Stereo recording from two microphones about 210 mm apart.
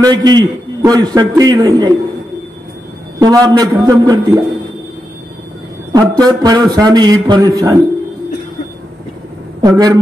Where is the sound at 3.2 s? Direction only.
20° right (ahead or behind).